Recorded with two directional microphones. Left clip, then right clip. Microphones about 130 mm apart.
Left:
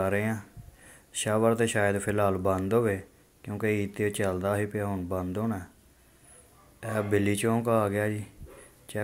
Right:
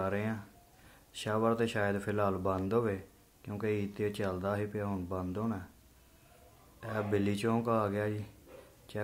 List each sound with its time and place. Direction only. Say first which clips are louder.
0.0 s speech: left 7 dB; 25° left (ahead or behind)
6.8 s speech: left 6 dB; 25° left (ahead or behind)